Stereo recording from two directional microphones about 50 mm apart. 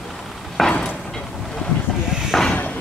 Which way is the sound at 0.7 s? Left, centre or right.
Centre.